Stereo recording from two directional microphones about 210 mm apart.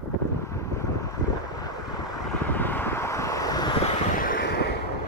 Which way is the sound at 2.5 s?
10° left (ahead or behind).